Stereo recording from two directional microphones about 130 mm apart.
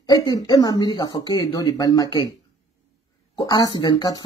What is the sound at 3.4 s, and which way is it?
Speech, 30° left (ahead or behind).